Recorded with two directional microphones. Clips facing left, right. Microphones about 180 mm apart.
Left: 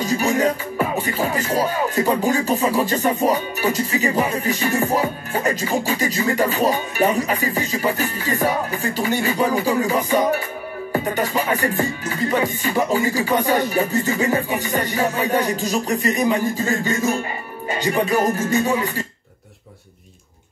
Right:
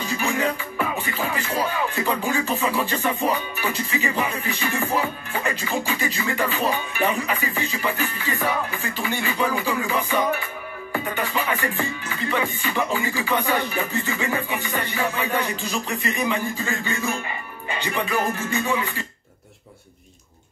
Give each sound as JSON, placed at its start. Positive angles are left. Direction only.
{"t": 0.0, "sound": "music", "side_deg": 40}